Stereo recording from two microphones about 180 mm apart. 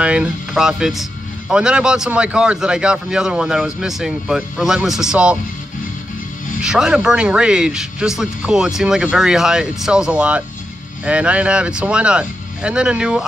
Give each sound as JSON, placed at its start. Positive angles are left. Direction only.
{"t": 0.0, "sound": "a man's voice", "side_deg": -5}
{"t": 6.6, "sound": "a man's voice", "side_deg": -5}